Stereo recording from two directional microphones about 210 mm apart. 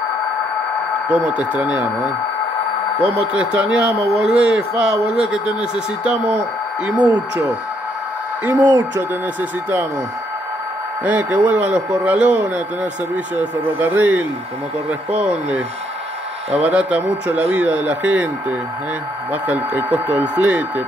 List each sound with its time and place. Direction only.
1.1 s speech: 5° right (ahead or behind)
3.0 s a man's voice: 5° right (ahead or behind)
8.5 s speech: 20° right (ahead or behind)
9.4 s speech: 10° right (ahead or behind)
11.1 s speech: 5° right (ahead or behind)
19.4 s speech: 5° right (ahead or behind)